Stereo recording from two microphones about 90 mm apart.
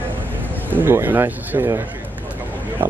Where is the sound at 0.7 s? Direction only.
25° right (ahead or behind).